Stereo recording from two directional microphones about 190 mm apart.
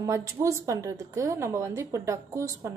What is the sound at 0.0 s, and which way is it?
A woman's voice, 15° right (ahead or behind).